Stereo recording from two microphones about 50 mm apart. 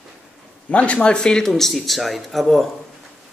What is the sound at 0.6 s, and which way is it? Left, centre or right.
A man's voice, left.